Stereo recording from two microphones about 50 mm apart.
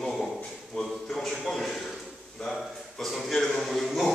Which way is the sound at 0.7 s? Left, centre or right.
Centre.